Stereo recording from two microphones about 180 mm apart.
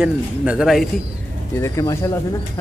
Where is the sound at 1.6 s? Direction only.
15° left (ahead or behind).